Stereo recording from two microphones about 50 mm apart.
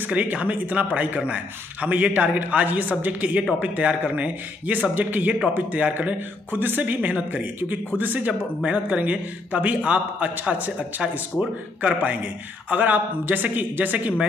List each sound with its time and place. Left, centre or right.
0.0 s a man's voice: right
11.8 s speech: right